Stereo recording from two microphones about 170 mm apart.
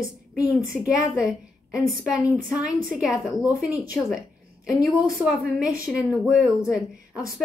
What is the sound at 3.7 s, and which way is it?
Speech, 20° left (ahead or behind).